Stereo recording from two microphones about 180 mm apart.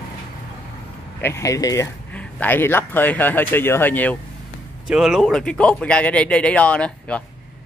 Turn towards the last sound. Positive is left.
turn(degrees=5)  # may be behind; listen again after turning